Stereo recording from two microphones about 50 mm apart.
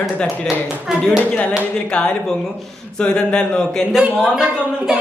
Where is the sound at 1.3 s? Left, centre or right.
Left.